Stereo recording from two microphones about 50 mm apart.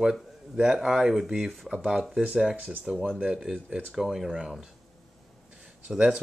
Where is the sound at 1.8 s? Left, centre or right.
Centre.